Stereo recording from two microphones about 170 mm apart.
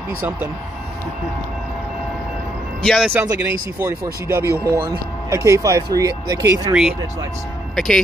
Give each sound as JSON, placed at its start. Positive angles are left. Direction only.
{"t": 2.8, "sound": "speech", "side_deg": 0}
{"t": 3.1, "sound": "speech", "side_deg": -15}
{"t": 7.7, "sound": "speech", "side_deg": 0}